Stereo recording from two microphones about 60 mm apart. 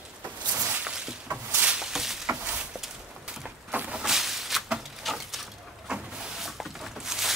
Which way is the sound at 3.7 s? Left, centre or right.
Right.